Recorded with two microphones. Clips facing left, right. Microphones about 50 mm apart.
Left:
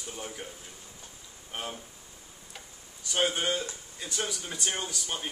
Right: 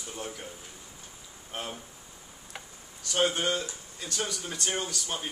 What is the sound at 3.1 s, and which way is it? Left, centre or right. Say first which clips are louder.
Speech: right 1 dB; centre.